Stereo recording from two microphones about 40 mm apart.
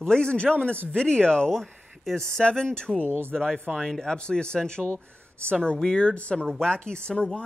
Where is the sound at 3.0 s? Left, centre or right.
Right.